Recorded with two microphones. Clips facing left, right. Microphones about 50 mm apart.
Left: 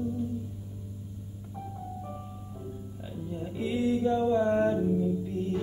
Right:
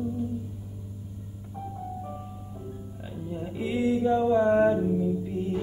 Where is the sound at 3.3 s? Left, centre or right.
Centre.